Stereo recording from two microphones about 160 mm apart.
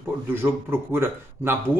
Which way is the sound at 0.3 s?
15° right (ahead or behind).